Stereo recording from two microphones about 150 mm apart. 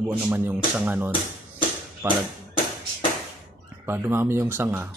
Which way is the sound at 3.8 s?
15° right (ahead or behind).